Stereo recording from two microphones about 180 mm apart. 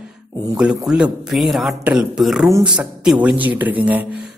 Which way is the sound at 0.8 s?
5° right (ahead or behind).